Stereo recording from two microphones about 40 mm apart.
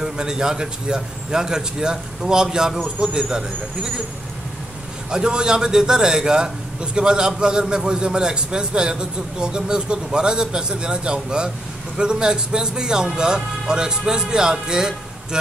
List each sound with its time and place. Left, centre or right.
0.0 s a man's voice: centre
5.1 s a man's voice: centre